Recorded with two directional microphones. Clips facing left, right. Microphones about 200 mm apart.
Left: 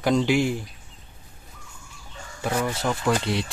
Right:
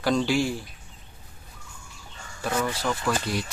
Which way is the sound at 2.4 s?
15° left (ahead or behind).